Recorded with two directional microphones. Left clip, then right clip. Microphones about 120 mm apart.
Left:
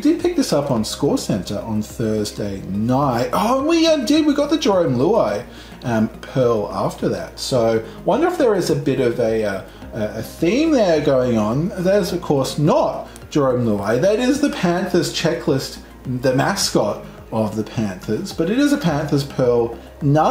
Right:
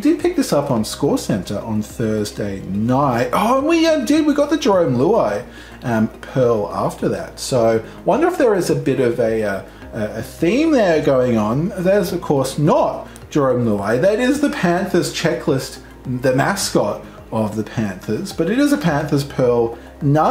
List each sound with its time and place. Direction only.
0.0 s speech: 5° right (ahead or behind)
6.9 s speech: 40° right (ahead or behind)
7.2 s speech: 10° right (ahead or behind)